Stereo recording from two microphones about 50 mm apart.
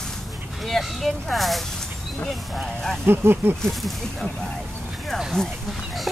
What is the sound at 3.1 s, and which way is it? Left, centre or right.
Speech, right.